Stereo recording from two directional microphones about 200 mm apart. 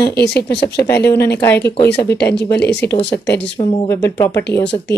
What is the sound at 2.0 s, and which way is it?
Speech, 10° left (ahead or behind).